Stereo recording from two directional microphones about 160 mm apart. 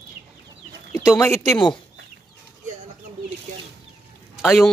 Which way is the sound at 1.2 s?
15° left (ahead or behind).